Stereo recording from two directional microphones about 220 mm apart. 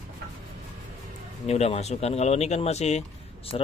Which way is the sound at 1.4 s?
30° left (ahead or behind).